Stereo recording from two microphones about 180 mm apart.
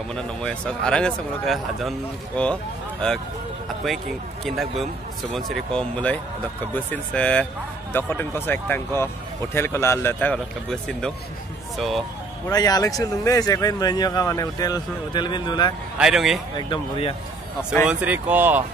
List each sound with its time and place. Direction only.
0.1 s speech: 5° left (ahead or behind)
4.5 s speech: centre (ahead or behind)
12.4 s speech: 20° left (ahead or behind)
16.0 s speech: centre (ahead or behind)
16.5 s speech: 25° left (ahead or behind)
17.8 s speech: 10° right (ahead or behind)